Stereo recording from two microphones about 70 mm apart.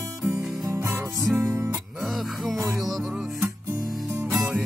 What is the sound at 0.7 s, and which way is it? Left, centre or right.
Music, right.